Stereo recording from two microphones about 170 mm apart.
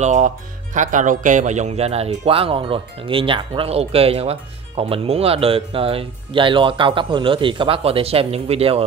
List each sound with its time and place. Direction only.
0.0 s speech: 45° right (ahead or behind)